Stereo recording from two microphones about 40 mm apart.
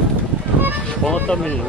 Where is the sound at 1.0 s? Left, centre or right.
Left.